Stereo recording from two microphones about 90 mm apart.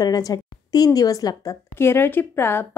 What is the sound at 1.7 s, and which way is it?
Speech, 25° left (ahead or behind).